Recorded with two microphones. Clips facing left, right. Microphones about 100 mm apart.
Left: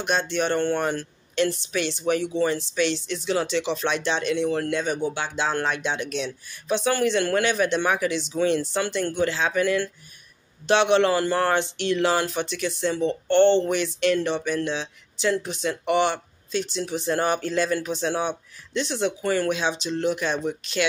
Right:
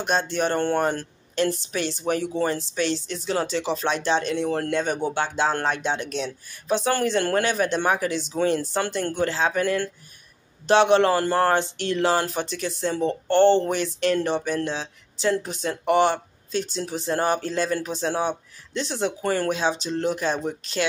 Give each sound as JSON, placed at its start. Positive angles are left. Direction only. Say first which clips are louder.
{"t": 0.0, "sound": "speech", "louder": "right 1 dB", "side_deg": -40}